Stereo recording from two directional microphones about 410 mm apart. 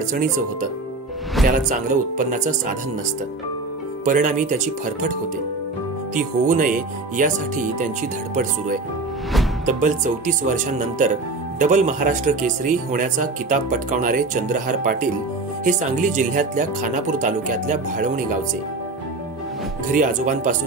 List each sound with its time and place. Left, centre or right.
0.1 s speech: centre
4.0 s speech: centre
6.1 s speech: centre
9.7 s speech: centre
19.9 s speech: centre